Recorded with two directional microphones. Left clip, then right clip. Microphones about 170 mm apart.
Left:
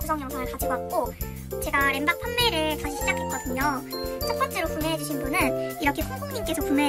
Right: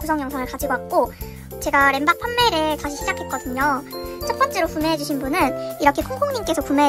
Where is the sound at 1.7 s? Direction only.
15° right (ahead or behind).